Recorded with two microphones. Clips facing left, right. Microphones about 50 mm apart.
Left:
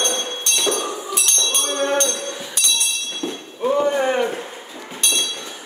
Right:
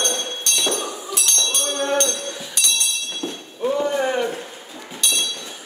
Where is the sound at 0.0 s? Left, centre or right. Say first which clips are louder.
Left 1 dB; left.